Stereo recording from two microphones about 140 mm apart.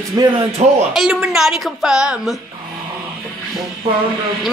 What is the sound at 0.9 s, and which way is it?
A man's voice, 5° right (ahead or behind).